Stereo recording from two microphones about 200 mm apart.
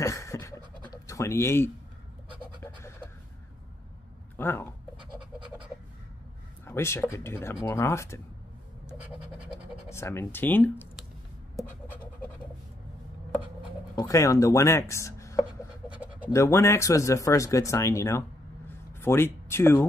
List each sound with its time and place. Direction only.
0.0 s a sound: 15° left (ahead or behind)
1.0 s speech: 15° left (ahead or behind)
2.6 s a sound: 10° left (ahead or behind)
4.4 s speech: 10° left (ahead or behind)
6.6 s speech: 10° left (ahead or behind)
9.8 s speech: 10° left (ahead or behind)
13.9 s chopping: 15° left (ahead or behind)
16.3 s speech: 15° left (ahead or behind)